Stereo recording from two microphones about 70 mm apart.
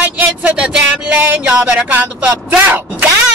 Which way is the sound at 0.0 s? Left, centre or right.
Right.